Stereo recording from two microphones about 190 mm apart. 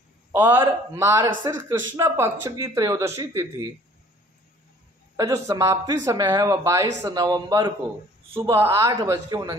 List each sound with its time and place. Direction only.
0.3 s speech: 10° right (ahead or behind)
5.1 s speech: 20° right (ahead or behind)